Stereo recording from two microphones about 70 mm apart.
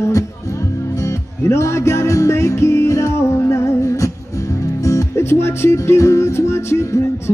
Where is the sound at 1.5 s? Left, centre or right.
Left.